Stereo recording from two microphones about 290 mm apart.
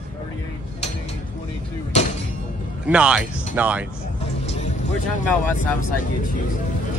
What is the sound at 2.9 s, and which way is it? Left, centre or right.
Speech, centre.